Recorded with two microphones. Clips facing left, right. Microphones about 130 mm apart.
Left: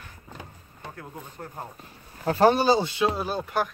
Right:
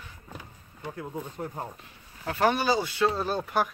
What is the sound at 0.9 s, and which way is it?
Speech, 15° right (ahead or behind).